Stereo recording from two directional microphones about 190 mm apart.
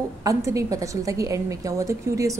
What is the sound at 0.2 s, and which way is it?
A woman's voice, 15° right (ahead or behind).